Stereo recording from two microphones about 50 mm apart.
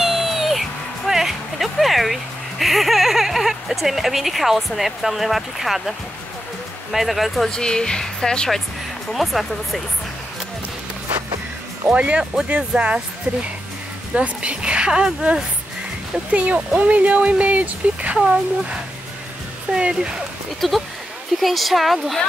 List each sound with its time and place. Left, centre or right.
0.0 s music: centre
2.6 s speech: centre
7.5 s speech: centre
9.1 s speech: centre
11.9 s speech: right
16.3 s speech: right
19.7 s speech: centre
20.6 s speech: centre